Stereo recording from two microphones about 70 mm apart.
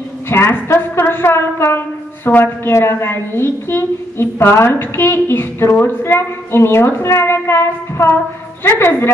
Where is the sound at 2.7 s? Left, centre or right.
Left.